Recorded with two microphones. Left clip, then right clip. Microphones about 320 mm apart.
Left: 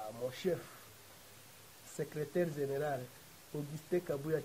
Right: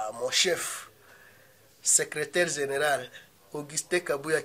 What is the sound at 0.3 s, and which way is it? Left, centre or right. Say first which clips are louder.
Speech: right 13 dB; centre.